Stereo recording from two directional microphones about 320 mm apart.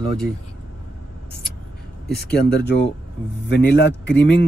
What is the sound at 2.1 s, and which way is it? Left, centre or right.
Speech, left.